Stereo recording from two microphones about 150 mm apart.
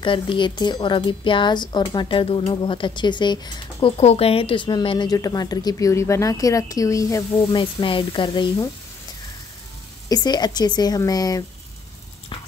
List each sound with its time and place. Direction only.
0.0 s speech: 35° left (ahead or behind)
4.0 s a woman's voice: 45° left (ahead or behind); by 7.2 s 20° left (ahead or behind)
7.4 s speech: 35° left (ahead or behind)
10.0 s a woman's voice: 25° left (ahead or behind)